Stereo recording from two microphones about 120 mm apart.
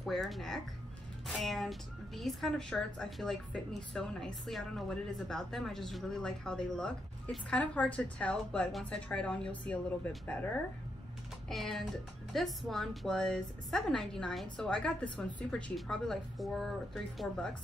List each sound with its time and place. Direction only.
0.0 s speech: centre (ahead or behind)
11.4 s speech: 5° left (ahead or behind)